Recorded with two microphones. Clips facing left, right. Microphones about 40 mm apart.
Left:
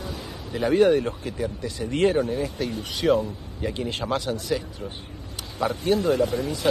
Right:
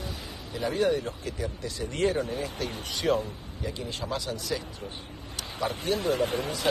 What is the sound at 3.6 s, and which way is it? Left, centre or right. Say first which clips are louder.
Speech: left 6 dB; left.